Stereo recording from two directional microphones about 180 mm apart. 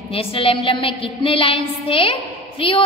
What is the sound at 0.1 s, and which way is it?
A woman's voice, 30° left (ahead or behind).